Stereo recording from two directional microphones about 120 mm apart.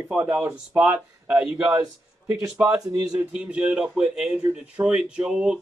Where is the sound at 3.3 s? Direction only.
10° right (ahead or behind).